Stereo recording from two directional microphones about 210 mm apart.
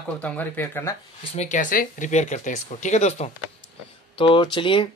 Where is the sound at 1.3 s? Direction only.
35° left (ahead or behind).